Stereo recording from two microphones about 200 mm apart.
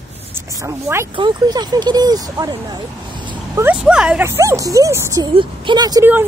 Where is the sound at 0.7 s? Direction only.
15° right (ahead or behind).